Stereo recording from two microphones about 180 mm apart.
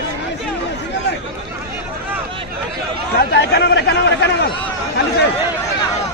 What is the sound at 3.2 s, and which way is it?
Chatter, 60° left (ahead or behind).